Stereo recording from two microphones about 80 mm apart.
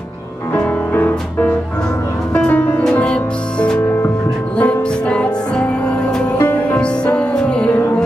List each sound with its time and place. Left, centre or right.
0.6 s music: centre